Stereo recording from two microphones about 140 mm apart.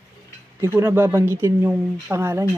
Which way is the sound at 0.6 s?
20° right (ahead or behind).